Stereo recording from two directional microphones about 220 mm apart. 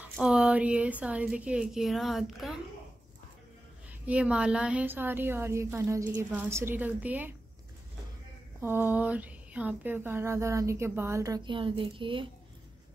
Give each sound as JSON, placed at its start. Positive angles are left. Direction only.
{"t": 0.1, "sound": "a woman's voice", "side_deg": 0}
{"t": 4.0, "sound": "speech", "side_deg": -5}
{"t": 8.5, "sound": "speech", "side_deg": -10}